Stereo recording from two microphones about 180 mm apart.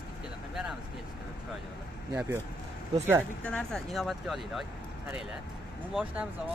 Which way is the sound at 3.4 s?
5° left (ahead or behind).